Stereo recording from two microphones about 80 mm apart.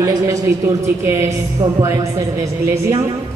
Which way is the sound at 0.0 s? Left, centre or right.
Right.